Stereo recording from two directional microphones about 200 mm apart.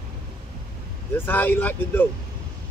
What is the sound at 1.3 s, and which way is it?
Speech, 10° left (ahead or behind).